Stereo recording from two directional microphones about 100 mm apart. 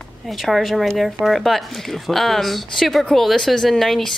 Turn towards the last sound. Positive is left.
turn(degrees=0)  # may be behind; listen again after turning